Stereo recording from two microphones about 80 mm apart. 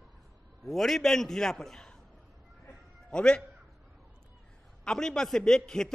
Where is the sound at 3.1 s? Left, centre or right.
Centre.